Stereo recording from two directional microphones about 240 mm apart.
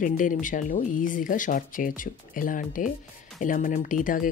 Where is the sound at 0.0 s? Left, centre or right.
Left.